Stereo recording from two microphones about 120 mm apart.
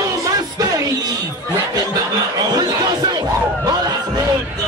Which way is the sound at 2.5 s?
35° right (ahead or behind).